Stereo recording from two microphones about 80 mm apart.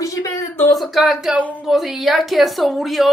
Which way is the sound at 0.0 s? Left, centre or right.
Left.